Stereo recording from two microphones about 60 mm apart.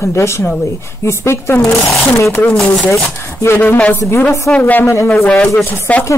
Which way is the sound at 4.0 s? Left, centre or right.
Left.